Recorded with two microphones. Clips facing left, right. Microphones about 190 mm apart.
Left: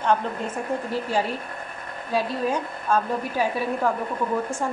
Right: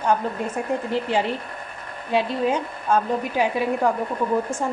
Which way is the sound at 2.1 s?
25° right (ahead or behind).